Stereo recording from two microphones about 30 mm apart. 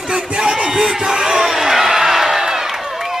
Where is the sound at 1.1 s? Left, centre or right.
Centre.